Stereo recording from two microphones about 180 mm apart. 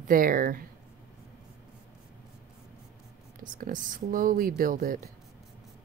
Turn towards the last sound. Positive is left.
turn(degrees=-50)  # may be behind; listen again after turning